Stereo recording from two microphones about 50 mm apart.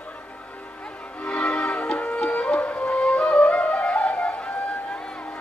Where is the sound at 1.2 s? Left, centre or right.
Centre.